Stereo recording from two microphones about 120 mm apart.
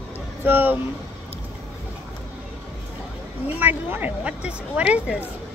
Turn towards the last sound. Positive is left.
turn(degrees=-10)  # may be behind; listen again after turning